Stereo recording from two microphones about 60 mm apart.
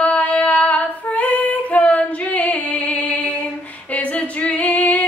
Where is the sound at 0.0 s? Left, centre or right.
Left.